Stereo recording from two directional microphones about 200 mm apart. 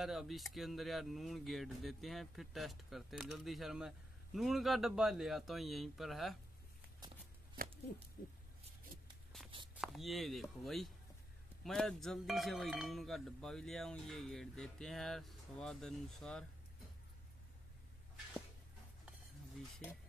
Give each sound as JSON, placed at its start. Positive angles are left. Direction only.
{"t": 0.0, "sound": "speech", "side_deg": 0}
{"t": 7.6, "sound": "a sound", "side_deg": -45}
{"t": 8.2, "sound": "speech", "side_deg": 40}
{"t": 9.3, "sound": "walk", "side_deg": 0}
{"t": 9.8, "sound": "speech", "side_deg": 0}